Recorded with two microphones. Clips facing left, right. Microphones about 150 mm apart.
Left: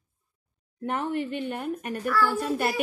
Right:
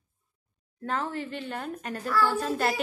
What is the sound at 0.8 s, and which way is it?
A woman's voice, 20° left (ahead or behind).